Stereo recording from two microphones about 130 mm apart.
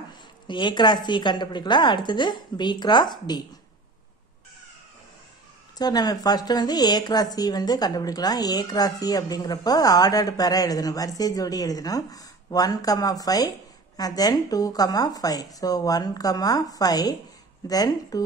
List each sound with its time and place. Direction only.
0.5 s a woman's voice: 35° left (ahead or behind)
5.8 s a woman's voice: 30° left (ahead or behind)